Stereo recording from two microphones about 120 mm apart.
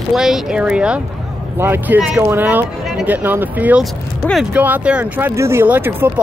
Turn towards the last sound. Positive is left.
turn(degrees=-15)  # may be behind; listen again after turning